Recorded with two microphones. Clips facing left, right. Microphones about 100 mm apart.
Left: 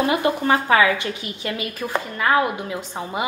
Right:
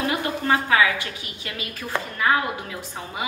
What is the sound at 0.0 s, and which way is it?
A woman's voice, 25° left (ahead or behind).